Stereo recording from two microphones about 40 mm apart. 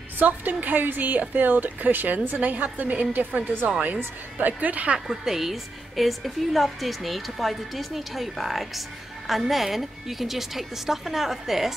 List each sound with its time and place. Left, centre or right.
0.2 s a woman's voice: right
5.0 s a woman's voice: centre